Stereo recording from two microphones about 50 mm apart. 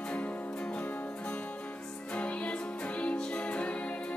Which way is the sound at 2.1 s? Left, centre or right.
Left.